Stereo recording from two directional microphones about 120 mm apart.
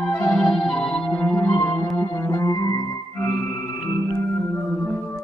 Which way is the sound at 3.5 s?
40° left (ahead or behind).